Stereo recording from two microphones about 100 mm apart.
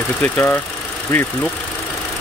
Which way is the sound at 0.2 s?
20° left (ahead or behind).